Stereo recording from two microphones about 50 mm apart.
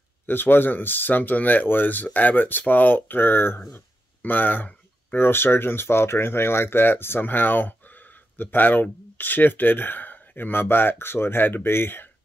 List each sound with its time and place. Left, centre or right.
0.3 s speech: left
3.7 s a sound: left
5.1 s speech: left